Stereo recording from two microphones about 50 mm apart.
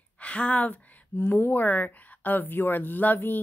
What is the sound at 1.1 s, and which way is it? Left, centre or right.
Speech, left.